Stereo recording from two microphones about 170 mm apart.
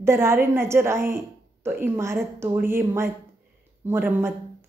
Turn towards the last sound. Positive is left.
turn(degrees=-15)  # may be behind; listen again after turning